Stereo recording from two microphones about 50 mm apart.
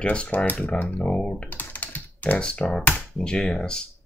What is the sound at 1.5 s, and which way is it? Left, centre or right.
Computer keyboard, left.